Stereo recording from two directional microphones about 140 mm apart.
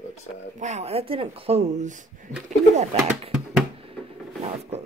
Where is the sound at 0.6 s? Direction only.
50° right (ahead or behind).